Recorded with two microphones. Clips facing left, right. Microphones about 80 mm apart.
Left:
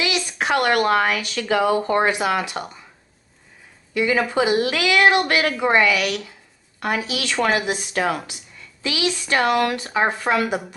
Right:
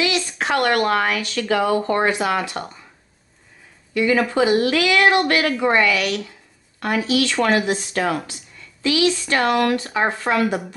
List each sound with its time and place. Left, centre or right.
0.0 s speech: centre
3.9 s speech: centre